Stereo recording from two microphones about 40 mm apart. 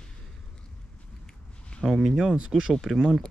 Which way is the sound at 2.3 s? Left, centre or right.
Right.